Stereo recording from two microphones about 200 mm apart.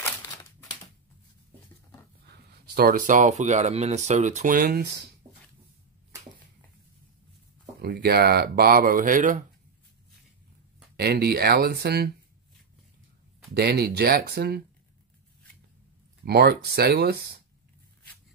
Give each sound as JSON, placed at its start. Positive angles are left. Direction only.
{"t": 0.0, "sound": "a sound", "side_deg": 15}
{"t": 2.7, "sound": "speech", "side_deg": -50}
{"t": 3.1, "sound": "speech", "side_deg": -35}
{"t": 7.8, "sound": "speech", "side_deg": -50}
{"t": 11.0, "sound": "speech", "side_deg": -50}
{"t": 13.6, "sound": "speech", "side_deg": -50}
{"t": 16.3, "sound": "speech", "side_deg": -55}